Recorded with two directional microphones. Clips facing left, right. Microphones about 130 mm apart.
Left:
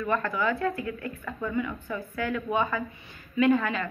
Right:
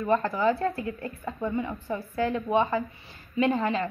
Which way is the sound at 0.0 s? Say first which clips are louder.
Right 3 dB; 30° right (ahead or behind).